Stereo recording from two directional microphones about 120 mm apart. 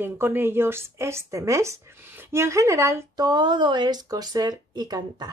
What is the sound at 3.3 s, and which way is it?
Speech, 35° right (ahead or behind).